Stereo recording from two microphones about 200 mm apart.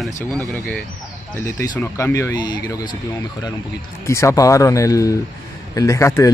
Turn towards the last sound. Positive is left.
turn(degrees=15)  # may be behind; listen again after turning